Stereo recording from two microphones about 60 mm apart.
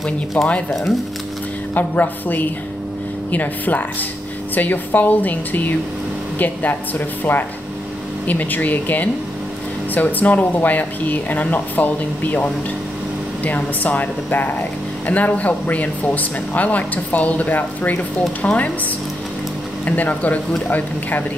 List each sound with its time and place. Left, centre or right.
0.0 s speech: centre
1.7 s speech: left
13.8 s speech: left
19.8 s speech: left